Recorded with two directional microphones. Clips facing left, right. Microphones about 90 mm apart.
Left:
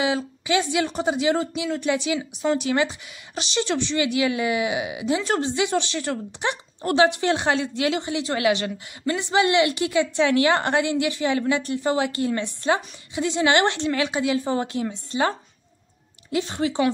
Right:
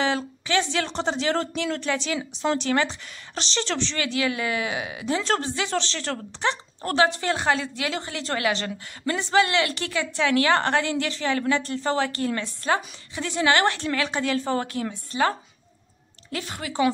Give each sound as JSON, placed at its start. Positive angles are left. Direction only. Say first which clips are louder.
{"t": 0.0, "sound": "speech", "louder": "left 1 dB", "side_deg": 10}